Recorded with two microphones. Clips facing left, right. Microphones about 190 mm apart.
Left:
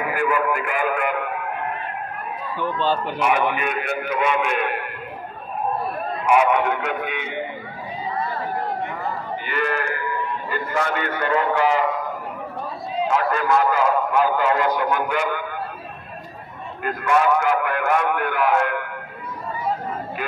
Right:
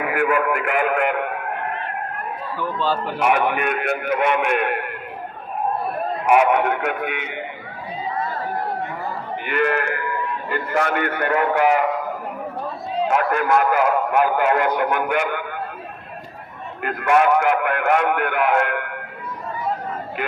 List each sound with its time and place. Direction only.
0.0 s a sound: 65° right (ahead or behind)
2.5 s speech: 5° right (ahead or behind)
3.3 s a man's voice: 60° right (ahead or behind)
6.2 s a man's voice: 60° right (ahead or behind)
9.5 s a man's voice: 60° right (ahead or behind)
13.1 s a man's voice: 60° right (ahead or behind)
16.8 s a man's voice: 65° right (ahead or behind)